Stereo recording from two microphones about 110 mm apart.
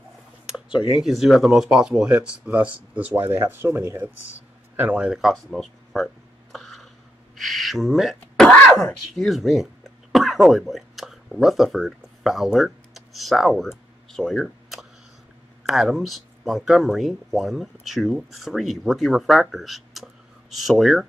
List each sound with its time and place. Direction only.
0.8 s speech: 5° right (ahead or behind)
3.1 s speech: 20° right (ahead or behind); by 6.0 s centre (ahead or behind)
6.5 s a sound: centre (ahead or behind)
7.3 s speech: centre (ahead or behind)
10.1 s a sound: centre (ahead or behind)
15.6 s speech: 5° right (ahead or behind)